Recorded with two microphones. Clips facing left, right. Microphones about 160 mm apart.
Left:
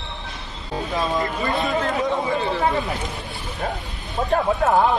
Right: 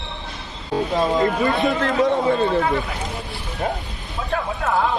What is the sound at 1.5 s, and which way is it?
Speech, 65° right (ahead or behind).